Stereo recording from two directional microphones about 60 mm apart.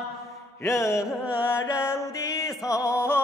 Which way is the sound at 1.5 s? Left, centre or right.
Left.